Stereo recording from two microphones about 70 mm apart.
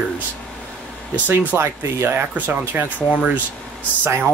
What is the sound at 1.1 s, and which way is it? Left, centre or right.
Speech, right.